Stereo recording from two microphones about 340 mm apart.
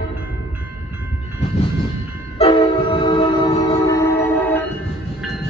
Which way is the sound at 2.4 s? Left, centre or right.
Centre.